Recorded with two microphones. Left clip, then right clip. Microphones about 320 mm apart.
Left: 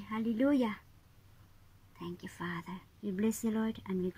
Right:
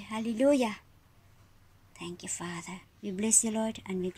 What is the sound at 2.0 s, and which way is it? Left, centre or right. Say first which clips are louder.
A woman's voice: right 3 dB; centre.